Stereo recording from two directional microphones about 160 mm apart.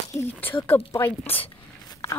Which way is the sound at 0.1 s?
15° left (ahead or behind).